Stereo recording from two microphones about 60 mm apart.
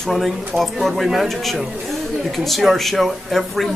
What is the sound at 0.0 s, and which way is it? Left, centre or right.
Speech, centre.